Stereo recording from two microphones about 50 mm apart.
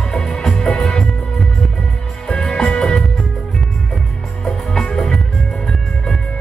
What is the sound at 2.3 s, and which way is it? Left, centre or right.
Music, centre.